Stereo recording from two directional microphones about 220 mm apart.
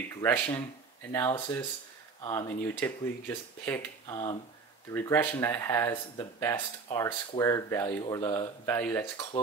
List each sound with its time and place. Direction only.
0.1 s speech: 10° left (ahead or behind)